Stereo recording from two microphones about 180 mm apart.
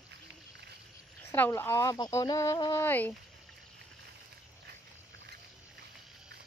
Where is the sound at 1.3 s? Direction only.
10° left (ahead or behind).